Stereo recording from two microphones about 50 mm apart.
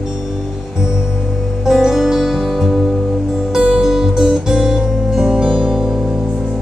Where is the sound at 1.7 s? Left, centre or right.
Centre.